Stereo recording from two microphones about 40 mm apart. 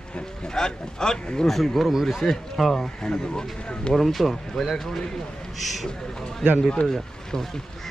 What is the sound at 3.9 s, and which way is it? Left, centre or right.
Speech, centre.